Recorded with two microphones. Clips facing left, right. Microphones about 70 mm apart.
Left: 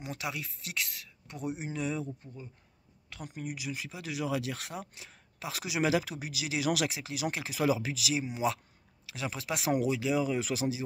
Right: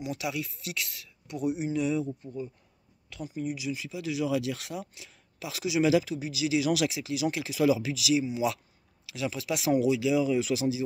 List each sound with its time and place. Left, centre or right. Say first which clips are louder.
0.0 s speech: right 5 dB; left
3.2 s speech: right 6 dB; left